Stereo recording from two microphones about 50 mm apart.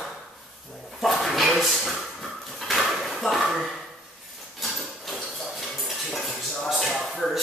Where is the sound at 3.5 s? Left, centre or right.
Centre.